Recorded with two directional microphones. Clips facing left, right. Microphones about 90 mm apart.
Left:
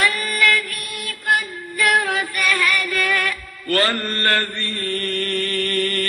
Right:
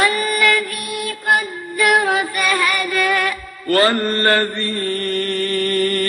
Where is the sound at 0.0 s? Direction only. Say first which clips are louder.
Right 3 dB; 20° right (ahead or behind).